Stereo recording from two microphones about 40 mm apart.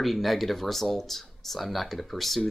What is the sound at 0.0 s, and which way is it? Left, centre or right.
Speech, centre.